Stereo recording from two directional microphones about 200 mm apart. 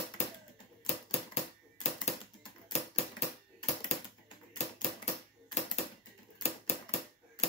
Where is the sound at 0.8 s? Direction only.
35° left (ahead or behind).